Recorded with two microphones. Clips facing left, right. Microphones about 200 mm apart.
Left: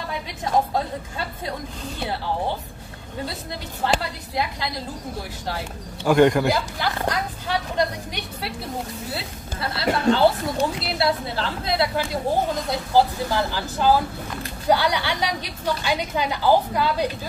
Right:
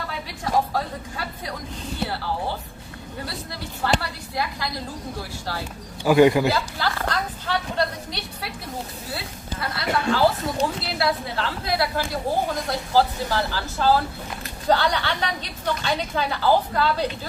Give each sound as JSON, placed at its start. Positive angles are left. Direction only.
{"t": 0.7, "sound": "speech", "side_deg": 25}
{"t": 3.8, "sound": "speech", "side_deg": 20}
{"t": 6.0, "sound": "a man's voice", "side_deg": -5}
{"t": 6.5, "sound": "a woman's voice", "side_deg": 15}
{"t": 9.1, "sound": "a woman's voice", "side_deg": 25}